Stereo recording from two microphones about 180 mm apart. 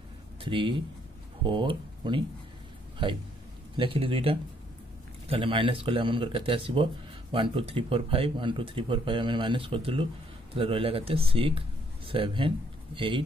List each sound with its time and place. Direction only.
0.4 s speech: 25° right (ahead or behind)